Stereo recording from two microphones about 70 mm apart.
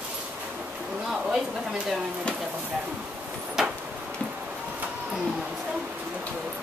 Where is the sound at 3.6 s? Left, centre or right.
Centre.